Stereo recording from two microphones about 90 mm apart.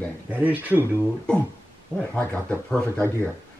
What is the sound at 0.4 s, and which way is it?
Speech, 20° right (ahead or behind).